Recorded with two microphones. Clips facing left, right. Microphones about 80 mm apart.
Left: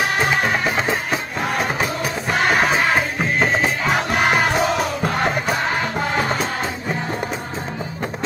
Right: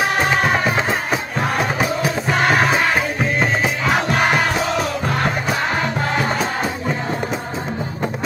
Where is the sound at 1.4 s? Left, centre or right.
Centre.